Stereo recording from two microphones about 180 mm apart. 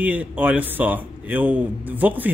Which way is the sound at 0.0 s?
10° right (ahead or behind).